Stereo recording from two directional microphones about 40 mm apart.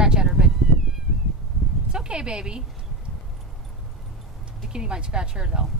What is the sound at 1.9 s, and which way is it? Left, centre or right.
Speech, right.